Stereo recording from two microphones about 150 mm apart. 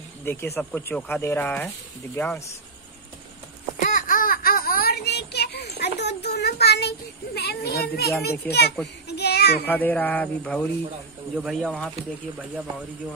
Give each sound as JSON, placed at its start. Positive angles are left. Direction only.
{"t": 0.2, "sound": "speech", "side_deg": 15}
{"t": 3.8, "sound": "baby cry", "side_deg": 65}
{"t": 8.2, "sound": "a child's voice", "side_deg": 90}
{"t": 9.1, "sound": "a sound", "side_deg": 90}
{"t": 9.7, "sound": "speech", "side_deg": 10}